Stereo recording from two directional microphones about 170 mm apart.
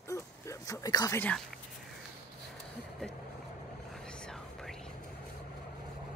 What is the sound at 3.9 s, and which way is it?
Whispering, 5° left (ahead or behind).